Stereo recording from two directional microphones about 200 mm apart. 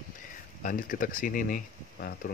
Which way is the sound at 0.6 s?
40° left (ahead or behind).